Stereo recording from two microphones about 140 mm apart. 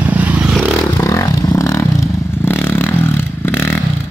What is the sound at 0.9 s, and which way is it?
Vehicle, 20° left (ahead or behind).